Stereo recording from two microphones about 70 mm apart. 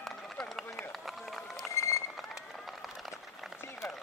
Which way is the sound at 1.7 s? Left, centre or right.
Left.